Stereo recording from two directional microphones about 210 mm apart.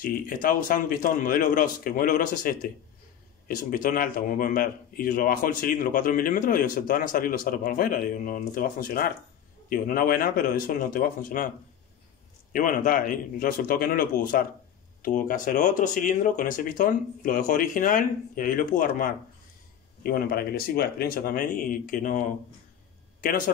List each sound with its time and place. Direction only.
0.0 s a man's voice: 45° left (ahead or behind)
12.5 s a man's voice: 40° left (ahead or behind)